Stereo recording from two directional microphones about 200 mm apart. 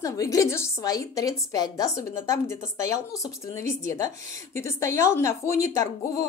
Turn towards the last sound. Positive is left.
turn(degrees=15)  # may be behind; listen again after turning